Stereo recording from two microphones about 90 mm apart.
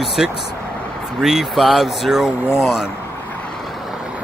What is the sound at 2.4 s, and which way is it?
Speech, 30° left (ahead or behind).